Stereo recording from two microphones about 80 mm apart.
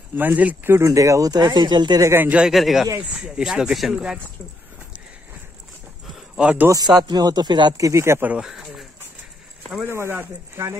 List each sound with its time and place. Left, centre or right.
0.1 s speech: right
0.7 s speech: right
2.1 s speech: right
2.4 s a man's voice: centre
6.3 s speech: centre
6.7 s speech: right
7.7 s speech: right
8.4 s speech: centre
9.8 s speech: right